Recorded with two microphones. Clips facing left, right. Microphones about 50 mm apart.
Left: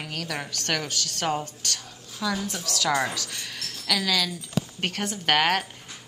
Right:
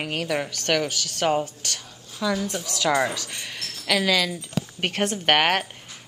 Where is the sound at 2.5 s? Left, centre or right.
Right.